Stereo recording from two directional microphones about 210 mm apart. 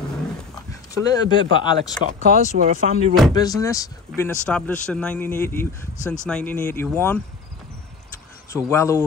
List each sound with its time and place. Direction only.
0.7 s speech: 20° left (ahead or behind)
2.0 s speech: 35° right (ahead or behind)
3.3 s speech: 15° left (ahead or behind)
4.5 s a man's voice: 5° left (ahead or behind)
8.6 s speech: 15° left (ahead or behind)